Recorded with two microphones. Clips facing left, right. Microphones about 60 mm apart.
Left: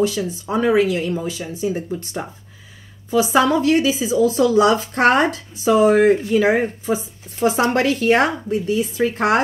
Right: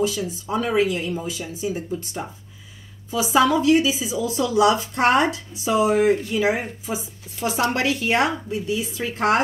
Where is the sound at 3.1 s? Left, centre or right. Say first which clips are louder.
Left 3 dB; left.